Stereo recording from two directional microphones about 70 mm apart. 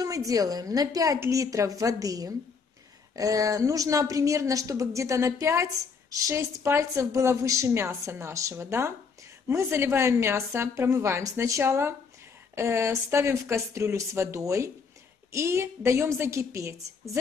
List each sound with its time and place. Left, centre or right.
0.0 s a woman's voice: right